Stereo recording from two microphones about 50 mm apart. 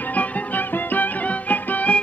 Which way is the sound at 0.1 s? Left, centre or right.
Left.